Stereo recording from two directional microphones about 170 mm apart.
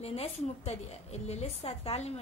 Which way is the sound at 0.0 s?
35° left (ahead or behind).